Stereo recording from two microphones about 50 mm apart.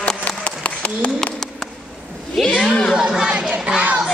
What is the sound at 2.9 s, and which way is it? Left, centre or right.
Chatter, centre.